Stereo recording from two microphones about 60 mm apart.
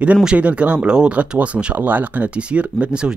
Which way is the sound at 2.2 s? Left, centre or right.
Centre.